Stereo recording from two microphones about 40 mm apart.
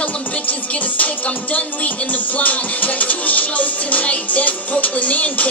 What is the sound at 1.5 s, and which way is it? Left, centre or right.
Music, left.